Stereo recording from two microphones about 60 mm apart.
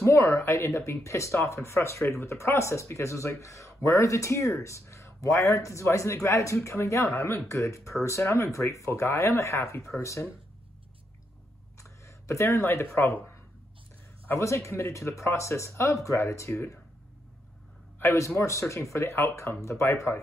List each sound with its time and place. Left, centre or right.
0.0 s speech: left
12.1 s a sound: left
12.5 s speech: left
14.4 s speech: left
18.0 s speech: left